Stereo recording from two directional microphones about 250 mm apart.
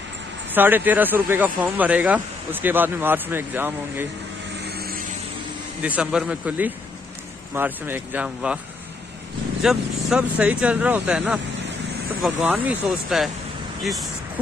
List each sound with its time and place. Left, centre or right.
0.6 s speech: centre
4.6 s vehicle: right
5.8 s speech: centre
9.6 s speech: centre